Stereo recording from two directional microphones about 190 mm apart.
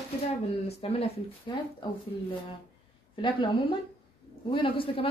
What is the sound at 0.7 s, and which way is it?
Speech, 35° left (ahead or behind).